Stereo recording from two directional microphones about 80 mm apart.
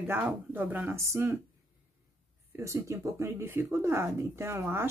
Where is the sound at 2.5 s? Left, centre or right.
Right.